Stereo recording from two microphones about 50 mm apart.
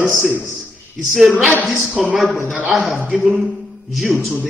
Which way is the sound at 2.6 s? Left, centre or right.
Centre.